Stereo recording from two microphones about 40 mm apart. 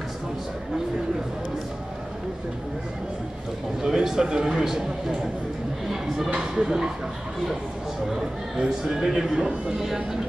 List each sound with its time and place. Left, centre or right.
3.8 s a man's voice: centre
8.1 s a man's voice: centre